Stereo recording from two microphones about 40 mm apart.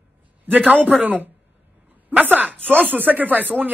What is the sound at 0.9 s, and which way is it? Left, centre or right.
Speech, right.